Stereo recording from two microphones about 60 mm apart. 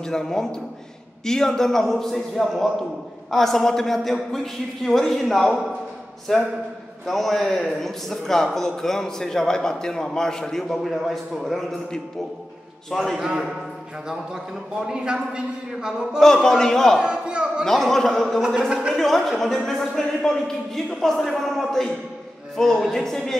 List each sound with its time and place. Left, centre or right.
0.0 s a man's voice: centre
13.2 s a man's voice: centre
16.4 s a man's voice: centre
17.0 s a man's voice: centre
17.6 s speech: centre
18.7 s a man's voice: centre
18.9 s a man's voice: centre